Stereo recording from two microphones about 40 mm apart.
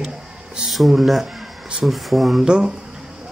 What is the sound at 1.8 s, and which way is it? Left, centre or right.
Speech, centre.